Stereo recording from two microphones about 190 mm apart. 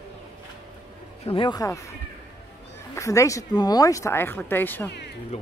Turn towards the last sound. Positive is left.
turn(degrees=35)  # may be behind; listen again after turning